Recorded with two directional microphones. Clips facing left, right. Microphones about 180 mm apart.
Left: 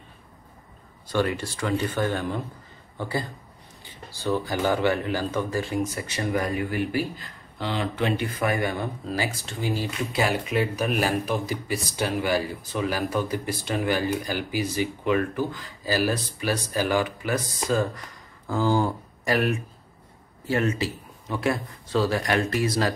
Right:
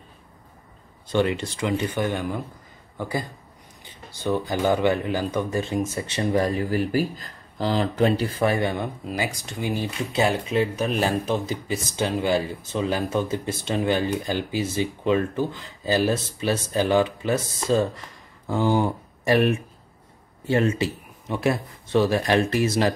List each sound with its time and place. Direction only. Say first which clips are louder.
1.0 s a man's voice: right 3 dB; 20° right (ahead or behind)